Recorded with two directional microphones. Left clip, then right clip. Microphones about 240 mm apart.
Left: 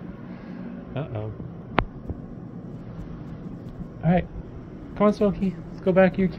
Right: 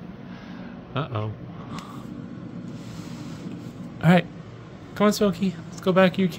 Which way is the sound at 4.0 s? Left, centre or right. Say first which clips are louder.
Right 4 dB; right.